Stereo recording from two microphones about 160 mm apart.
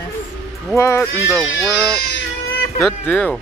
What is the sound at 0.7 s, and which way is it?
Speech, 15° left (ahead or behind).